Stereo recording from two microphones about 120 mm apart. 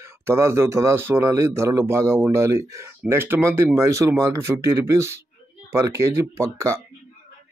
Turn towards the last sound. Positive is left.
turn(degrees=-25)  # may be behind; listen again after turning